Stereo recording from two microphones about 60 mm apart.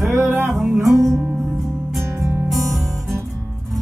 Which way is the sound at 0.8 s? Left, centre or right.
Right.